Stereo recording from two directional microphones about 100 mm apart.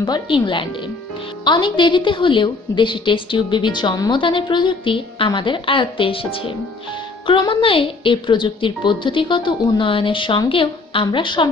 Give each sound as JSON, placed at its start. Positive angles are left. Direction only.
{"t": 0.0, "sound": "a woman's voice", "side_deg": 50}